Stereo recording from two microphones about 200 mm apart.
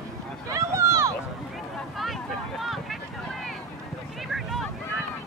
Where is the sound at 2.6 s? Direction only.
Centre (ahead or behind).